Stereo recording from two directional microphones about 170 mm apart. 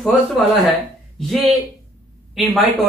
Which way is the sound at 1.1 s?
Centre (ahead or behind).